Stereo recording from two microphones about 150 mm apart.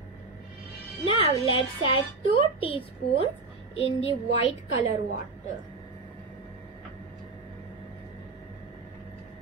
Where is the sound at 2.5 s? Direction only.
35° left (ahead or behind).